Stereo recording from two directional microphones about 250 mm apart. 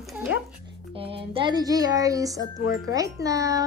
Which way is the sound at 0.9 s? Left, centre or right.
Right.